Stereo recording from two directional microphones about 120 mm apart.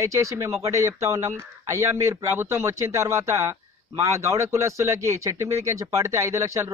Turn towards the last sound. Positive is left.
turn(degrees=-25)  # may be behind; listen again after turning